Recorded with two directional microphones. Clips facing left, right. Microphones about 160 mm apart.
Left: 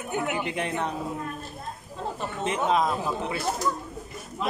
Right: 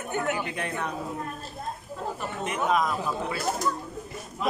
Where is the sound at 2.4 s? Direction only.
25° left (ahead or behind).